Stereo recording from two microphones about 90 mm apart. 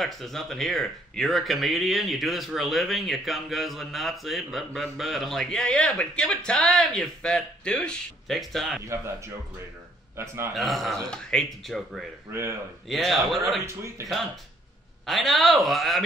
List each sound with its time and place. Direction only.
0.0 s speech: centre (ahead or behind)
8.8 s a man's voice: 30° right (ahead or behind)
10.5 s speech: centre (ahead or behind)
12.3 s a man's voice: 30° right (ahead or behind)
12.8 s speech: centre (ahead or behind)
13.7 s a man's voice: 30° right (ahead or behind)
15.0 s speech: centre (ahead or behind)